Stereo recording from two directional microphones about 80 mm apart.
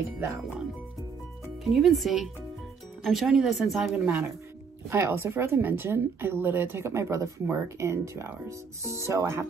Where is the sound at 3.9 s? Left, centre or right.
Right.